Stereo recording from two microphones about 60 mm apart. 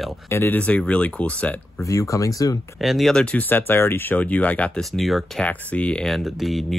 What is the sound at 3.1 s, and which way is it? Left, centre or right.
Speech, centre.